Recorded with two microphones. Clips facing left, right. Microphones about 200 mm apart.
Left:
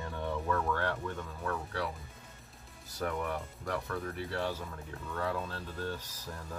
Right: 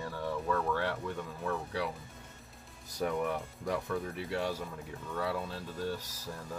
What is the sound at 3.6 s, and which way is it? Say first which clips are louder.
Speech: right 3 dB; 15° right (ahead or behind).